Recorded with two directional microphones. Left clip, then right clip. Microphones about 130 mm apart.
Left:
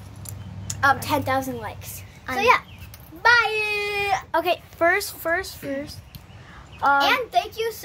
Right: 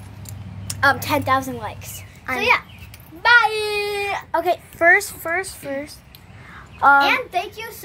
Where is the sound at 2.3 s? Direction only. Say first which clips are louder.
Even; 30° left (ahead or behind).